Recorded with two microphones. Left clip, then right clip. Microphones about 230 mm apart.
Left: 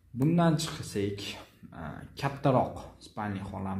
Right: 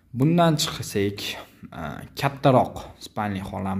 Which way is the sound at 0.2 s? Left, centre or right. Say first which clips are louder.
Right 8 dB; right.